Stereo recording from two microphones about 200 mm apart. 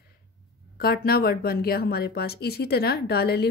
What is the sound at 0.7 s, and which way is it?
Speech, 50° left (ahead or behind).